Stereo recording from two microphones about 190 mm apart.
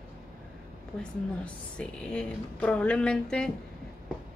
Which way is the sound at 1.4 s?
5° left (ahead or behind).